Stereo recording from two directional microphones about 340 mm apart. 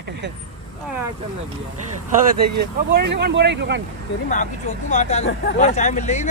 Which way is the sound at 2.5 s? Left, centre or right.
Right.